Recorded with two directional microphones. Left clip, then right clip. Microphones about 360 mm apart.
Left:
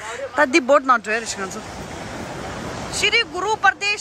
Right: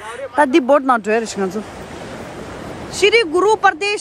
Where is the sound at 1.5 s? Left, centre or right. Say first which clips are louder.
Right 4 dB; right.